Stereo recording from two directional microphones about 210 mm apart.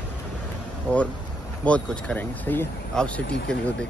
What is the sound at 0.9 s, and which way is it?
Speech, 5° left (ahead or behind).